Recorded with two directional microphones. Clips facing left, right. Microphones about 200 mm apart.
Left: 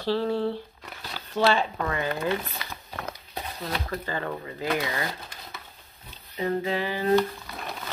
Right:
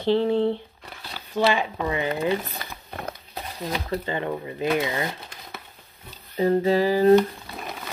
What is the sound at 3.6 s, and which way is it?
Speech, 15° right (ahead or behind).